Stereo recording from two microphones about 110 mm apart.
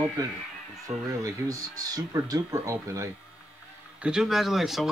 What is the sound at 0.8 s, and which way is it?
Speech, 30° right (ahead or behind).